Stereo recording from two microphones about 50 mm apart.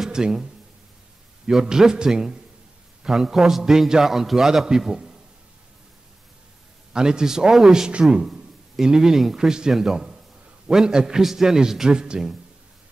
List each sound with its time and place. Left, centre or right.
0.0 s a man's voice: centre
6.9 s a man's voice: centre